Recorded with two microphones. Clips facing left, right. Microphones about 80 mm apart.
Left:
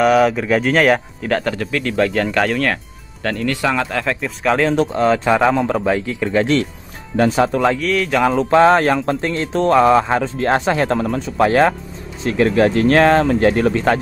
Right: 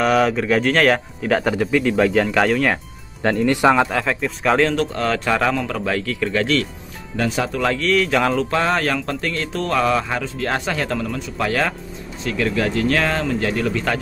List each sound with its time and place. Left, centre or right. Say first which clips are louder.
0.0 s speech: left 3 dB; centre
1.4 s speech: right 3 dB; centre
3.9 s speech: even; centre
4.6 s speech: left 5 dB; centre
7.8 s speech: left 1 dB; centre
8.4 s speech: left 8 dB; left